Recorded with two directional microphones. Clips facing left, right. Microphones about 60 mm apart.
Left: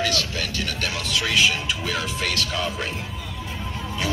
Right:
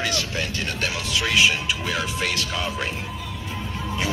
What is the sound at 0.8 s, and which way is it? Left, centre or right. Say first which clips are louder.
Speech: right 1 dB; centre.